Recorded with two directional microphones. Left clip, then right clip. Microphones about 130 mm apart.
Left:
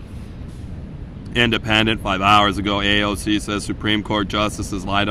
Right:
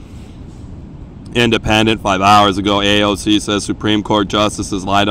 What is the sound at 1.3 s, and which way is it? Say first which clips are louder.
Speech: right 4 dB; 25° right (ahead or behind).